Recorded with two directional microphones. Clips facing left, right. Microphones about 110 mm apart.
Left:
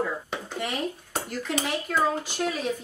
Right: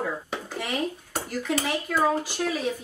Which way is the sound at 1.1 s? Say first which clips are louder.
Right 1 dB; 5° right (ahead or behind).